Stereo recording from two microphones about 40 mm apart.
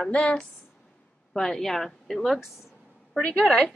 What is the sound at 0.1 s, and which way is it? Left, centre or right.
Speech, left.